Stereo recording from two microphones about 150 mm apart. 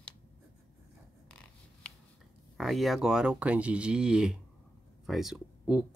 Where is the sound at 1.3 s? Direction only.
5° left (ahead or behind).